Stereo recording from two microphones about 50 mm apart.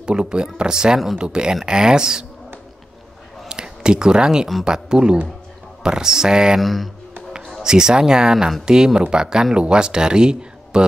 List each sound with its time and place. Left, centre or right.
0.0 s speech: centre
3.4 s a sound: centre
4.6 s speech: centre
6.6 s speech: centre
7.6 s speech: centre